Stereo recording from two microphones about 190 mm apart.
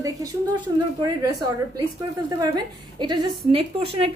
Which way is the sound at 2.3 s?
20° right (ahead or behind).